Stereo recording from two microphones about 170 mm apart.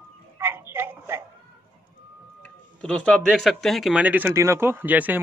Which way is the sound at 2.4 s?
5° left (ahead or behind).